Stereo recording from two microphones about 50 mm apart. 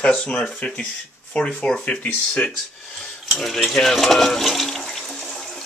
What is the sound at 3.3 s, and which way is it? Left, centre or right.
Speech, centre.